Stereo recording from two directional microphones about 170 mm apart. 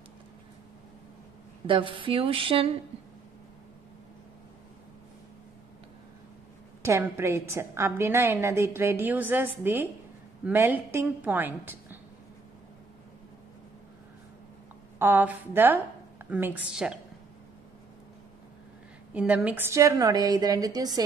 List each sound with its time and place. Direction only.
1.7 s a sound: 30° right (ahead or behind)
6.8 s a woman's voice: 15° right (ahead or behind)
15.0 s a woman's voice: 10° right (ahead or behind)
19.1 s a woman's voice: 10° right (ahead or behind)